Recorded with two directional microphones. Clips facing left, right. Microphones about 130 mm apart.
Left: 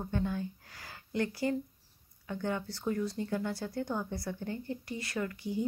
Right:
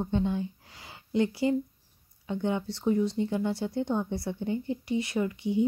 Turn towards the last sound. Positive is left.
turn(degrees=-20)  # may be behind; listen again after turning